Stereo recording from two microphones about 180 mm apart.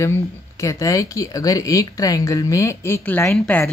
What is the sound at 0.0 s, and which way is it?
Speech, 15° left (ahead or behind).